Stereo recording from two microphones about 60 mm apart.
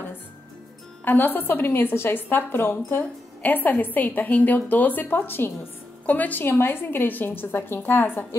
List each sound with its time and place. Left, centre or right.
1.0 s a woman's voice: left
3.0 s a woman's voice: left
6.0 s a woman's voice: left
6.4 s a woman's voice: left